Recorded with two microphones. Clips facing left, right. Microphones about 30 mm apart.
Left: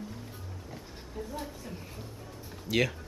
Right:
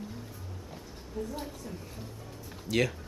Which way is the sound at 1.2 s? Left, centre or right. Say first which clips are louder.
Right 4 dB; centre.